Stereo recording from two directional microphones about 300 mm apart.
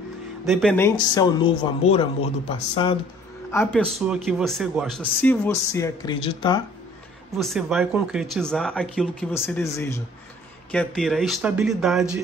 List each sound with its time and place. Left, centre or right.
0.5 s speech: centre
3.5 s speech: centre
7.3 s speech: centre